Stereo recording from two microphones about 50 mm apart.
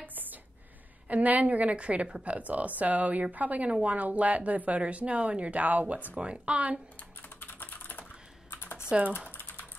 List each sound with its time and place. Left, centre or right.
0.0 s a sound: right
1.0 s a woman's voice: right
7.2 s typing: left